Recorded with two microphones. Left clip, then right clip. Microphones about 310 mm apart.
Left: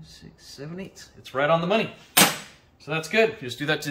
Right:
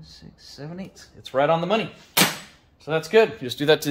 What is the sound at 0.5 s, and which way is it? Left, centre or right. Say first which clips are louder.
Speech: even; centre.